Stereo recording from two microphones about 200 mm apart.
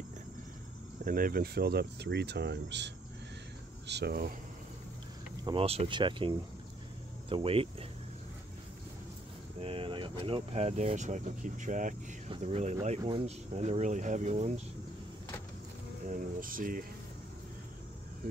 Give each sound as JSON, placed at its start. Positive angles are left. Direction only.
{"t": 1.0, "sound": "speech", "side_deg": -45}
{"t": 5.4, "sound": "speech", "side_deg": -25}
{"t": 9.6, "sound": "speech", "side_deg": -25}
{"t": 16.1, "sound": "speech", "side_deg": -45}